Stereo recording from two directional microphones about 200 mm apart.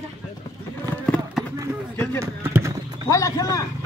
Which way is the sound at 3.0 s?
15° left (ahead or behind).